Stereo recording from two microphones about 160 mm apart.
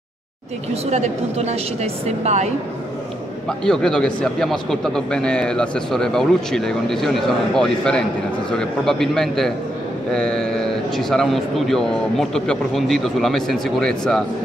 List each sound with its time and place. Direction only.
0.8 s speech: 45° right (ahead or behind)
3.4 s a man's voice: 5° left (ahead or behind)